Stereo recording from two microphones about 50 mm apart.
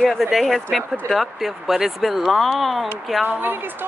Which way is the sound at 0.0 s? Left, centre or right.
Centre.